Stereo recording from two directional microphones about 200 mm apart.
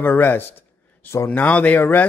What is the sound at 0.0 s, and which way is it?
Speech, 10° left (ahead or behind).